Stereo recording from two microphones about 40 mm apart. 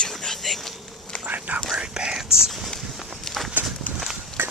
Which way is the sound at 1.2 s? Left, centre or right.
Right.